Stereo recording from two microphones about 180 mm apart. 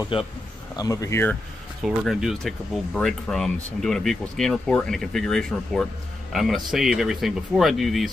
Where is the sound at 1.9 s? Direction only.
Centre (ahead or behind).